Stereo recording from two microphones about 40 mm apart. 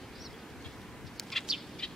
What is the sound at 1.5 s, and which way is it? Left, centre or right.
Bird, centre.